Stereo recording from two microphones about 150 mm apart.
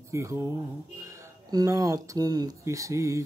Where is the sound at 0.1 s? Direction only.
20° right (ahead or behind).